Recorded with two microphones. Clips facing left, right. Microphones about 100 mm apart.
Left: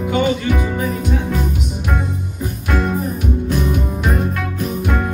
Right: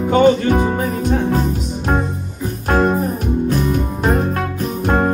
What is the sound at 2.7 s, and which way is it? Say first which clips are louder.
Music: right 5 dB; 40° right (ahead or behind).